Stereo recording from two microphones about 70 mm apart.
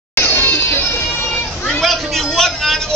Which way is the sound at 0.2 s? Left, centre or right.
Left.